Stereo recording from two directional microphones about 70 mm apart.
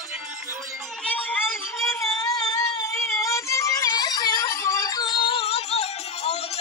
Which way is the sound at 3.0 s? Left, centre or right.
Left.